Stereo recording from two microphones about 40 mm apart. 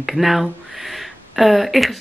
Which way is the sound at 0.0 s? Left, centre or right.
Centre.